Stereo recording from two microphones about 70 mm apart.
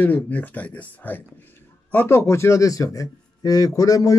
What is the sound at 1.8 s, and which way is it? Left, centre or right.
A man's voice, left.